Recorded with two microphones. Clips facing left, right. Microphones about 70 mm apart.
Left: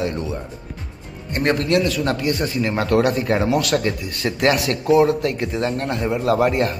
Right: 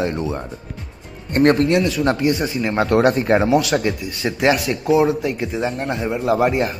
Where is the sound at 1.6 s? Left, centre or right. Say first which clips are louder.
Right 2 dB; centre.